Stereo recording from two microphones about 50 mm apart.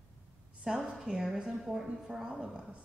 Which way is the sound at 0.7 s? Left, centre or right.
Centre.